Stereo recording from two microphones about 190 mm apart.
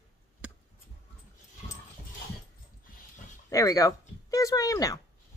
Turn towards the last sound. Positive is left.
turn(degrees=15)  # may be behind; listen again after turning